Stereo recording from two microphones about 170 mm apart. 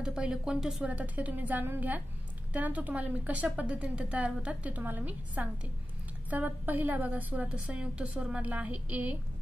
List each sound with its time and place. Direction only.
0.0 s a woman's voice: 5° right (ahead or behind)